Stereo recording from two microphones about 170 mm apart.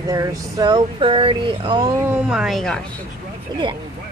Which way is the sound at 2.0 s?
10° right (ahead or behind).